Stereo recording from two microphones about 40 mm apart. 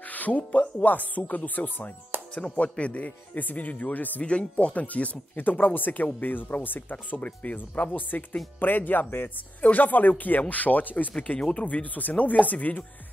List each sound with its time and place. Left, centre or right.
0.1 s speech: left
2.3 s speech: left
3.3 s speech: left
4.2 s speech: left
5.3 s speech: left